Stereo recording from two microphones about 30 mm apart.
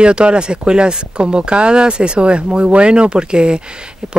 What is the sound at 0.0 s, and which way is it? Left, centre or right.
Speech, right.